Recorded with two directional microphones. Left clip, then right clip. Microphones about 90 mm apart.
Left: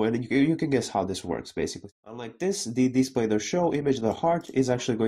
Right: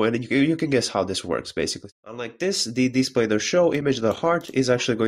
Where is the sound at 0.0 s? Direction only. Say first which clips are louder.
Right 3 dB; 20° left (ahead or behind).